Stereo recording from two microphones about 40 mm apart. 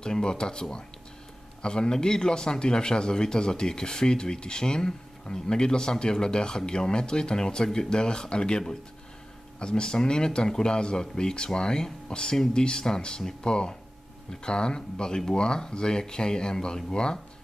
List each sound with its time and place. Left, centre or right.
0.0 s speech: centre